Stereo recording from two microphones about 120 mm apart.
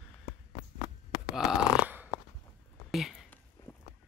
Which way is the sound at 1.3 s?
5° right (ahead or behind).